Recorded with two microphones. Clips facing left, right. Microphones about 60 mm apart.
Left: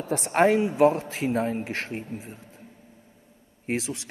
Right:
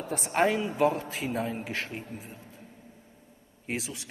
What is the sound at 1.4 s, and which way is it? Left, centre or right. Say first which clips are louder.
Speech: left 4 dB; left.